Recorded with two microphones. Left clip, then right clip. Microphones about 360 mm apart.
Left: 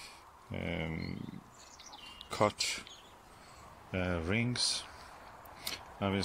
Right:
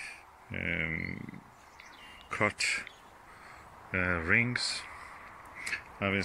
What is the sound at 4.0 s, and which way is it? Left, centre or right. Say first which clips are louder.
Speech: right 7 dB; centre.